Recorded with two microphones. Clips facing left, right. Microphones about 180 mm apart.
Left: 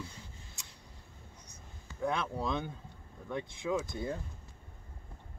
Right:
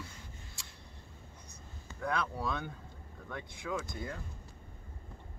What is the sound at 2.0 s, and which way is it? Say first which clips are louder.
Speech: left 2 dB; 25° left (ahead or behind).